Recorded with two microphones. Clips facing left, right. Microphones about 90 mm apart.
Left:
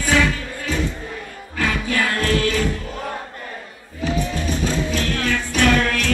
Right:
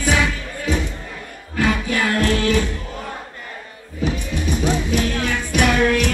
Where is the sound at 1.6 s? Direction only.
20° right (ahead or behind).